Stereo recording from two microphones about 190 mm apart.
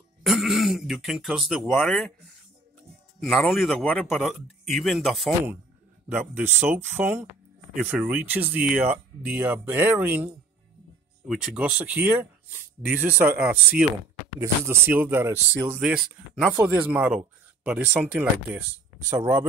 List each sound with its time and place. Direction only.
0.2 s speech: centre (ahead or behind)
3.2 s speech: centre (ahead or behind); by 19.4 s 15° right (ahead or behind)